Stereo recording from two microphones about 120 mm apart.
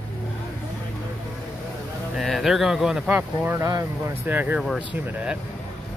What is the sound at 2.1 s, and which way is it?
Speech, centre (ahead or behind).